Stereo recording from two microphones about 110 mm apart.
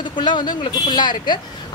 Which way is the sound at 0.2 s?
45° left (ahead or behind).